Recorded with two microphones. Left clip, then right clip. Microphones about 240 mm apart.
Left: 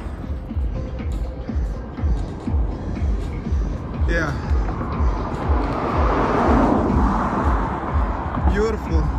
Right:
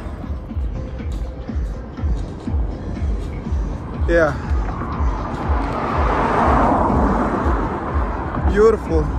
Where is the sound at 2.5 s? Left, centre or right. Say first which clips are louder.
Even; left.